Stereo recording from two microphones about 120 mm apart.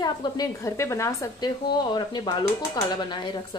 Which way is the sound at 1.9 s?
35° left (ahead or behind).